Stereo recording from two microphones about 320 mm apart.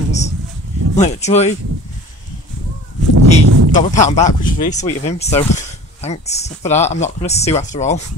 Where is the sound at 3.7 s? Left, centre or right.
Left.